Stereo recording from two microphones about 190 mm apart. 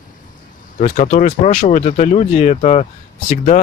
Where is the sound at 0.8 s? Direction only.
40° left (ahead or behind).